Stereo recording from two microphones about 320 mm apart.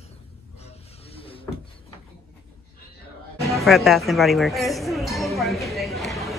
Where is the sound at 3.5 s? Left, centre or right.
Centre.